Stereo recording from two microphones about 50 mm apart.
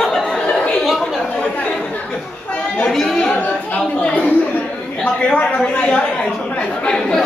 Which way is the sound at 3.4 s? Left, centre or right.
Left.